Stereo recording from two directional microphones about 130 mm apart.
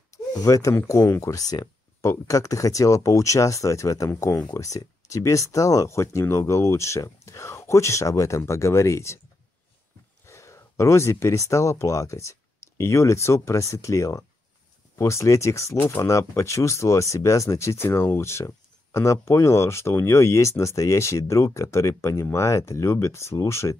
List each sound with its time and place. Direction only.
0.1 s speech: 25° left (ahead or behind)
10.2 s speech: 20° left (ahead or behind)